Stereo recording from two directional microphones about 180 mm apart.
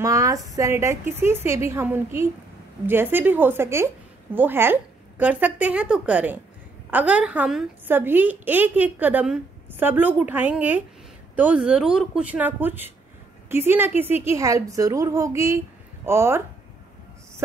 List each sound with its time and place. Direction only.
0.0 s a woman's voice: 20° right (ahead or behind)